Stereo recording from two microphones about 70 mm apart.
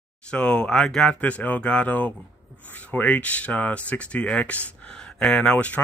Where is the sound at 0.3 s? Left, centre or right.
Centre.